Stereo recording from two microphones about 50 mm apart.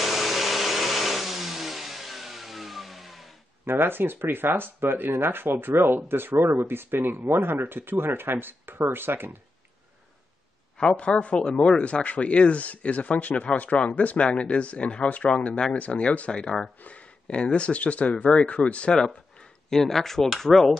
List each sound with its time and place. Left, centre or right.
0.0 s vehicle: centre
3.6 s speech: right
10.8 s speech: centre
19.7 s speech: centre